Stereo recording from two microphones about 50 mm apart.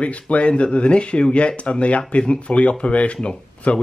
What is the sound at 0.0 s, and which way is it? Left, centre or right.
Speech, left.